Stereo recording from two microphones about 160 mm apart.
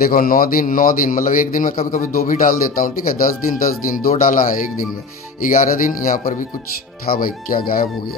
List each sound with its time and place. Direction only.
0.0 s speech: 65° left (ahead or behind)